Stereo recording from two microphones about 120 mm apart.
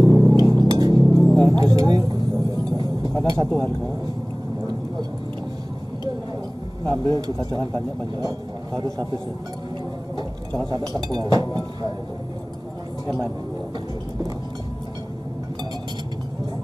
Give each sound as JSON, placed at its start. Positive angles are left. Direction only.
{"t": 0.0, "sound": "music", "side_deg": -35}
{"t": 1.5, "sound": "a sound", "side_deg": -35}
{"t": 6.9, "sound": "speech", "side_deg": -35}
{"t": 10.7, "sound": "speech", "side_deg": -35}